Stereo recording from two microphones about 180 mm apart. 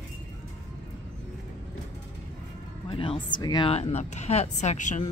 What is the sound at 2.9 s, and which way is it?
Speech, 30° left (ahead or behind).